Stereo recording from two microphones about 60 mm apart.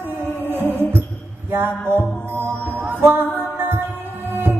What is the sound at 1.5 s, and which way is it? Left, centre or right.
Music, right.